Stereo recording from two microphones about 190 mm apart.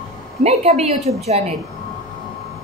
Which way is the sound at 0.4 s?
35° right (ahead or behind).